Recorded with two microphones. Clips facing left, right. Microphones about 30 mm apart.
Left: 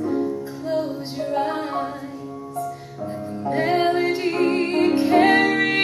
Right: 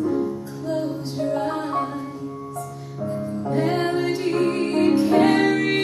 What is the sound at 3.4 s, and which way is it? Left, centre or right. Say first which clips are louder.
Music: left 3 dB; left.